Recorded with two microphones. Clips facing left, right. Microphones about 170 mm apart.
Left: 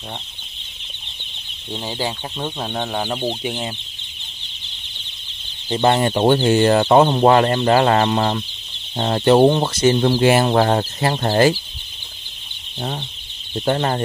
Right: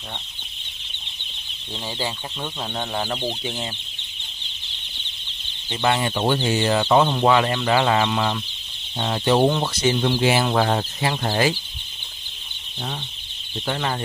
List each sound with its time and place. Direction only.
1.7 s speech: 15° left (ahead or behind)
5.7 s speech: 35° left (ahead or behind)
13.7 s speech: 40° left (ahead or behind)